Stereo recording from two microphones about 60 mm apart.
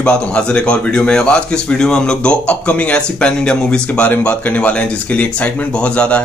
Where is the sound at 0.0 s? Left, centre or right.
Centre.